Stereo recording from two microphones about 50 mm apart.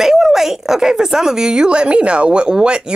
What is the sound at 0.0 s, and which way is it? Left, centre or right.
A woman's voice, centre.